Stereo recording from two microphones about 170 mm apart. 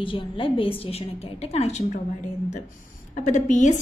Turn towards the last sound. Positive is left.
turn(degrees=45)  # may be behind; listen again after turning